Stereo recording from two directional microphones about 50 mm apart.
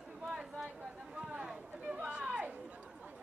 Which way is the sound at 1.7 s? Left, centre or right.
Right.